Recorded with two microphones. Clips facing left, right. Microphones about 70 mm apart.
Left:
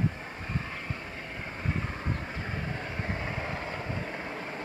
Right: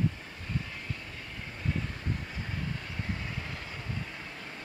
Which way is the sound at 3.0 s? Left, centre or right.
Left.